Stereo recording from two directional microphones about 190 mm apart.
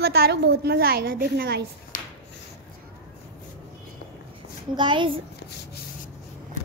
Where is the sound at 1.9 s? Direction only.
45° left (ahead or behind).